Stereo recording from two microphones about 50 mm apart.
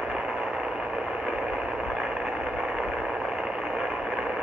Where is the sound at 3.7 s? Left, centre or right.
Centre.